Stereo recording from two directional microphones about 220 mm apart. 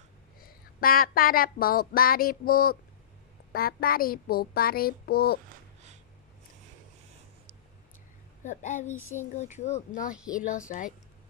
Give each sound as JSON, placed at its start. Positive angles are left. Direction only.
{"t": 0.4, "sound": "a child's voice", "side_deg": 40}
{"t": 8.5, "sound": "speech", "side_deg": 35}
{"t": 10.1, "sound": "speech", "side_deg": -5}
{"t": 10.7, "sound": "speech", "side_deg": 40}